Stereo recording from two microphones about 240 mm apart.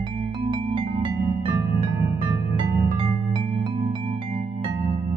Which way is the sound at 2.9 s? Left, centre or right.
Right.